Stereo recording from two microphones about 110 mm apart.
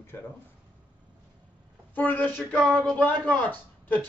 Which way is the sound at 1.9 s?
15° left (ahead or behind).